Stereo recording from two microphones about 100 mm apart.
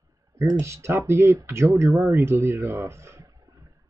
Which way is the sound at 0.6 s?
30° right (ahead or behind).